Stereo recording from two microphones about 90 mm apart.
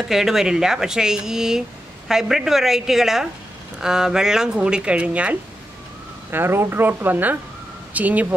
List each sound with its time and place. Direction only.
0.1 s a woman's voice: 5° right (ahead or behind)
6.3 s speech: 25° right (ahead or behind)